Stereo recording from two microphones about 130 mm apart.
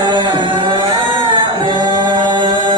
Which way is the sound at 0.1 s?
35° right (ahead or behind).